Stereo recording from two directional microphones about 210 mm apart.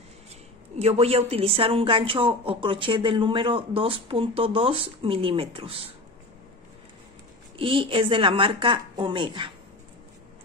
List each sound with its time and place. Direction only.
0.7 s a woman's voice: 30° right (ahead or behind)
7.5 s a woman's voice: 25° right (ahead or behind)